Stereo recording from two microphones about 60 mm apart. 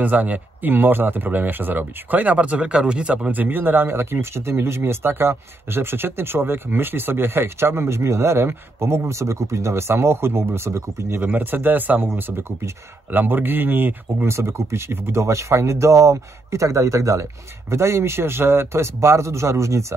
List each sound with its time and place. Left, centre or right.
0.0 s speech: right
3.3 s speech: right
11.1 s speech: right
14.3 s speech: right